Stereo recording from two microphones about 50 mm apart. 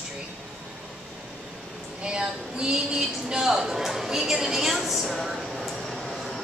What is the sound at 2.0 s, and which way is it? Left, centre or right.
A woman's voice, centre.